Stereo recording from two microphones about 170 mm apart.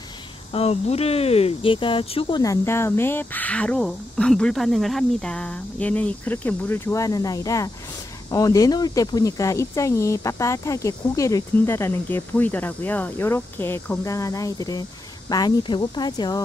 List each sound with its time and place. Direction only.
0.5 s speech: 35° left (ahead or behind)